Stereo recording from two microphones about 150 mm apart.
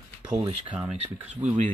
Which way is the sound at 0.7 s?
5° right (ahead or behind).